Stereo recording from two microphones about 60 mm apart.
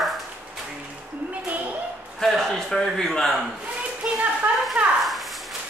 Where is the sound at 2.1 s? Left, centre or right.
Centre.